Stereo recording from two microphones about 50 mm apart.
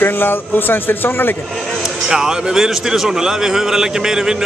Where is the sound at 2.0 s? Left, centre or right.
Centre.